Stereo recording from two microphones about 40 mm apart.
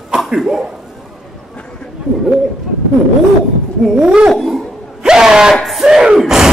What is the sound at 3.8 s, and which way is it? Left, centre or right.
Speech, centre.